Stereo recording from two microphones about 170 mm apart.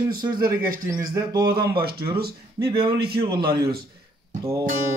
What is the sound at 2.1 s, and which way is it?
A man's voice, 65° right (ahead or behind).